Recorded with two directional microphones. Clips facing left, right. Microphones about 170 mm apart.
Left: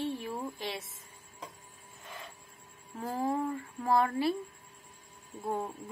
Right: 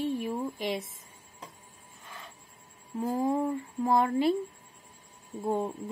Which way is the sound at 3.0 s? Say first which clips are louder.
Right 4 dB; 20° right (ahead or behind).